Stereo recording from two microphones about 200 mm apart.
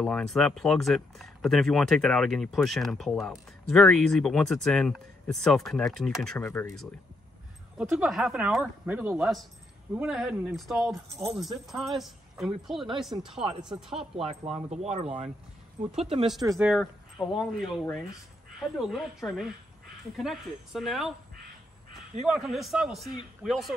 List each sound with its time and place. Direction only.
0.0 s speech: centre (ahead or behind)
7.7 s speech: centre (ahead or behind)
13.3 s speech: 25° right (ahead or behind)
16.5 s speech: centre (ahead or behind)
22.2 s speech: centre (ahead or behind)